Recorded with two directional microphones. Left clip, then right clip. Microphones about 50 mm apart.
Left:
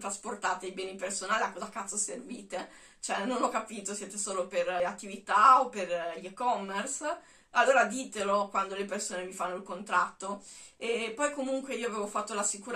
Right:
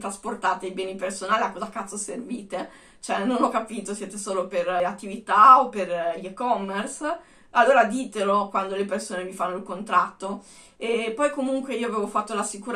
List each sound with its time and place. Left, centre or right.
0.0 s speech: right